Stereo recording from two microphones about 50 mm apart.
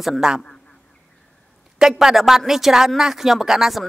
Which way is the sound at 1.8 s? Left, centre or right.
Centre.